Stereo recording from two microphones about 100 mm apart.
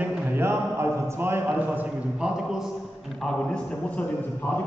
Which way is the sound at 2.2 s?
5° right (ahead or behind).